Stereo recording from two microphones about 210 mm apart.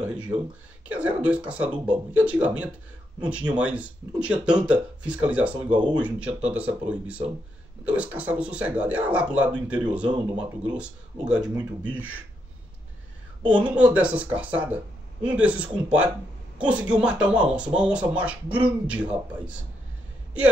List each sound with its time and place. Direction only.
0.0 s a man's voice: 5° right (ahead or behind)
13.5 s a man's voice: 5° right (ahead or behind)